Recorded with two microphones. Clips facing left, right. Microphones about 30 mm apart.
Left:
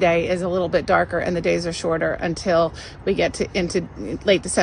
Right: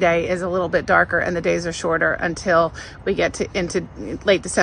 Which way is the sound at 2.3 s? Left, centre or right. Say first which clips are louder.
Right 1 dB; left.